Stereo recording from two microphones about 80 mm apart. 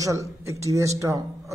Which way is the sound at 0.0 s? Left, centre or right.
Right.